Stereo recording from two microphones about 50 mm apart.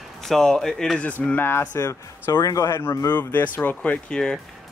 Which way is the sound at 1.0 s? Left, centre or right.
Left.